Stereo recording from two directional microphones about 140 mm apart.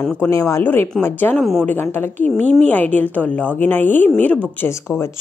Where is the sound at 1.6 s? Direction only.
15° left (ahead or behind).